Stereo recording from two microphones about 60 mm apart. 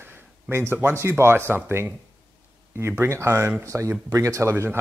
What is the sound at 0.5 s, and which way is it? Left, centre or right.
Speech, right.